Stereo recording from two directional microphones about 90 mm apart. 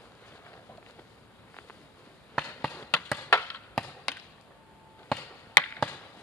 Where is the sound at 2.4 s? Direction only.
5° right (ahead or behind).